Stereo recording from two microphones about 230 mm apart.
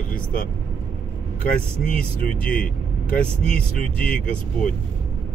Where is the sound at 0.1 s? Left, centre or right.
Left.